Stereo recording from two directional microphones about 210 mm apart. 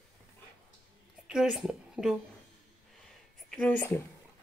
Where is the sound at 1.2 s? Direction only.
5° right (ahead or behind).